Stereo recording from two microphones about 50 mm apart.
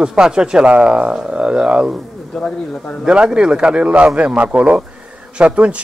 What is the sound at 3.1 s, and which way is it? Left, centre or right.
Speech, centre.